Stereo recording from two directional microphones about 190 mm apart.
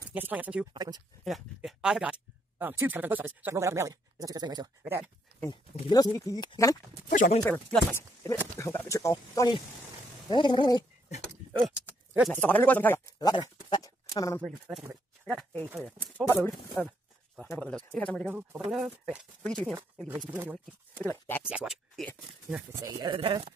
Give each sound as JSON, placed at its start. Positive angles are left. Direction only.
{"t": 0.1, "sound": "speech", "side_deg": -10}
{"t": 5.5, "sound": "speech", "side_deg": 20}
{"t": 7.1, "sound": "speech", "side_deg": 45}
{"t": 7.4, "sound": "speech", "side_deg": 10}
{"t": 12.1, "sound": "speech", "side_deg": 0}
{"t": 12.4, "sound": "speech", "side_deg": 10}
{"t": 13.2, "sound": "speech", "side_deg": 20}
{"t": 15.5, "sound": "speech", "side_deg": -10}
{"t": 16.3, "sound": "speech", "side_deg": 15}
{"t": 21.0, "sound": "speech", "side_deg": 10}
{"t": 21.5, "sound": "speech", "side_deg": -5}
{"t": 22.7, "sound": "speech", "side_deg": -20}